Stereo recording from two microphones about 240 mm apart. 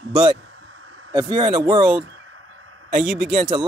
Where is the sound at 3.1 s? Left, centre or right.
Centre.